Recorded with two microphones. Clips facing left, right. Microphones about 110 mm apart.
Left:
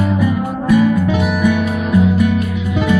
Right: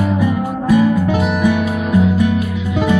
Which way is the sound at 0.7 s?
40° right (ahead or behind).